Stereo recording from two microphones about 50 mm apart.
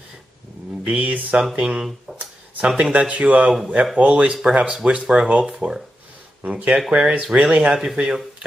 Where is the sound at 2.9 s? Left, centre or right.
Right.